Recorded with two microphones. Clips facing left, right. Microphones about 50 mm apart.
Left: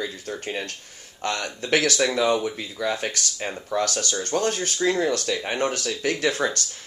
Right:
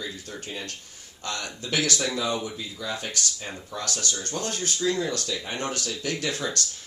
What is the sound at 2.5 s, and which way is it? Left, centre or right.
Speech, left.